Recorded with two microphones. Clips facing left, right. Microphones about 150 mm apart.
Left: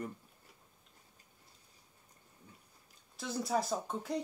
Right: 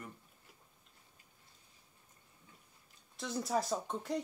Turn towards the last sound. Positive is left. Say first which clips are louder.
# even
turn(degrees=0)  # may be behind; listen again after turning